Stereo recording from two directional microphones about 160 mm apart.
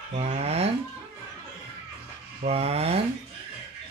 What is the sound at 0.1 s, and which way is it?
Livestock, 40° right (ahead or behind).